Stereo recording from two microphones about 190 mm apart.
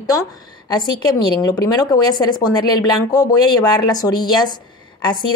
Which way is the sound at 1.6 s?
20° left (ahead or behind).